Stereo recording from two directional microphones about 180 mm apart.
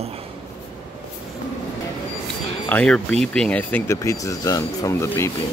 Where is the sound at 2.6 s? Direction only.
10° left (ahead or behind).